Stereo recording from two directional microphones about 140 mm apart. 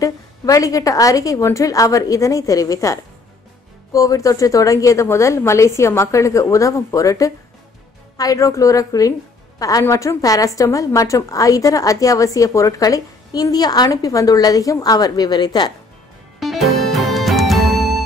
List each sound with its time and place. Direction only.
0.0 s a woman's voice: 25° left (ahead or behind)
16.3 s music: centre (ahead or behind)